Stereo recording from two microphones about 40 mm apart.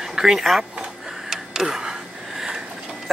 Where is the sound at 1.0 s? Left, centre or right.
Centre.